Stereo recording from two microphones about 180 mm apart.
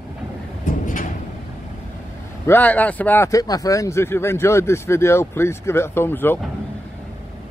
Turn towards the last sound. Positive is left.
turn(degrees=10)  # may be behind; listen again after turning